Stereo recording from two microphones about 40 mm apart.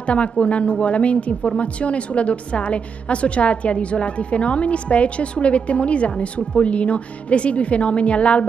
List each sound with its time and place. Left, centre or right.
0.0 s a woman's voice: left